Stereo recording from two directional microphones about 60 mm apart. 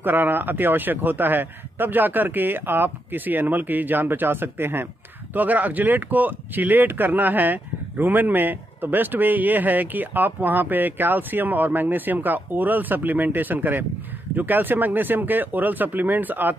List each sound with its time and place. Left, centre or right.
0.0 s speech: right
5.3 s speech: right